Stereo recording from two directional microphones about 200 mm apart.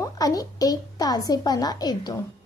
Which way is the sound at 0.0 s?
20° left (ahead or behind).